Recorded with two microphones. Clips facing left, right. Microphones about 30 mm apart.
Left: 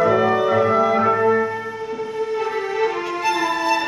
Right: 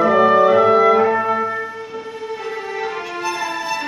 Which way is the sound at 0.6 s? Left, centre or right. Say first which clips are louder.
Right 4 dB; right.